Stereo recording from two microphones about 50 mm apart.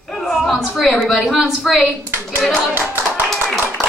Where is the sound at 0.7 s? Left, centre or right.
Centre.